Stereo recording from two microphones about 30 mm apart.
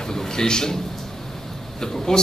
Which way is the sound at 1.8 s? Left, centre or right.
Left.